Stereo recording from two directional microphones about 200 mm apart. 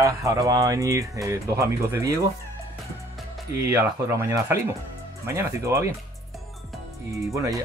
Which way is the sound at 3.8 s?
15° right (ahead or behind).